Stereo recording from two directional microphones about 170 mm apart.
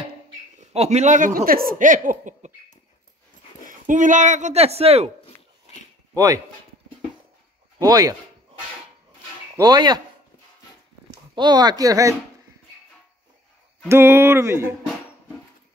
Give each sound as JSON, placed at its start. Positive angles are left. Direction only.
{"t": 0.6, "sound": "speech", "side_deg": -40}
{"t": 3.6, "sound": "speech", "side_deg": -50}
{"t": 6.1, "sound": "speech", "side_deg": -20}
{"t": 7.8, "sound": "speech", "side_deg": -20}
{"t": 9.6, "sound": "speech", "side_deg": -25}
{"t": 11.3, "sound": "speech", "side_deg": -25}
{"t": 13.8, "sound": "speech", "side_deg": -15}